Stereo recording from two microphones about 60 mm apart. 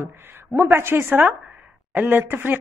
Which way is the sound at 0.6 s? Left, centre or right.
Right.